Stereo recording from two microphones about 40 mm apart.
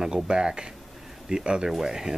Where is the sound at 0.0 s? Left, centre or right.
Centre.